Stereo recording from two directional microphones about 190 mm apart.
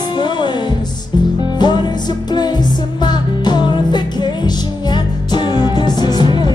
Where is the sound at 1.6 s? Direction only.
20° left (ahead or behind).